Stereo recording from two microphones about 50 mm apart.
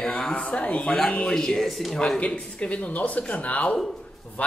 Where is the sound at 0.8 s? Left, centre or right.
Centre.